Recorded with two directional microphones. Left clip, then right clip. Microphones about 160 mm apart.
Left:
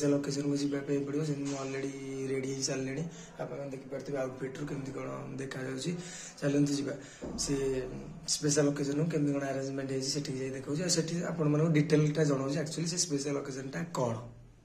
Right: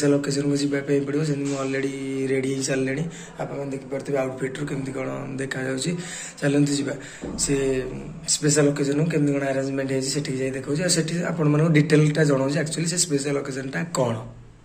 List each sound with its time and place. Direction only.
0.0 s a man's voice: 10° left (ahead or behind)
4.1 s a man's voice: 10° left (ahead or behind)